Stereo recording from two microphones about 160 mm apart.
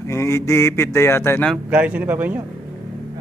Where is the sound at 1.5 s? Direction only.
10° right (ahead or behind).